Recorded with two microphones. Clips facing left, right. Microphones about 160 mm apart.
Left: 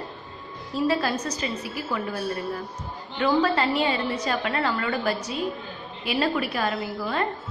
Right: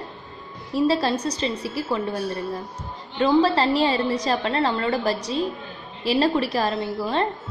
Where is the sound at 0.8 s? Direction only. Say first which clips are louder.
Right 3 dB; 30° right (ahead or behind).